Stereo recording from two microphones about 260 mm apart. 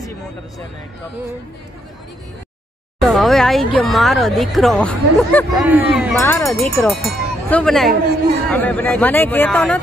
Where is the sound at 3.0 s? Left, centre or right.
Centre.